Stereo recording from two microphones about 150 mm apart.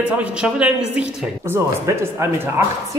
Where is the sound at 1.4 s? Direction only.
15° right (ahead or behind).